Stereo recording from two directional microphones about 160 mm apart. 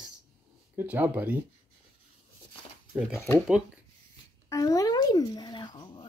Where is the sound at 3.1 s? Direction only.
15° left (ahead or behind).